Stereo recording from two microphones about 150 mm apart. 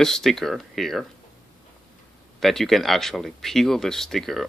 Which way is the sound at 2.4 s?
Centre (ahead or behind).